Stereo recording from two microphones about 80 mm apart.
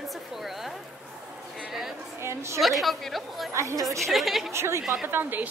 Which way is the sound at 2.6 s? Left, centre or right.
Centre.